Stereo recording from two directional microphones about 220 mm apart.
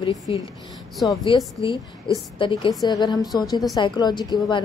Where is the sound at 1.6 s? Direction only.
25° left (ahead or behind).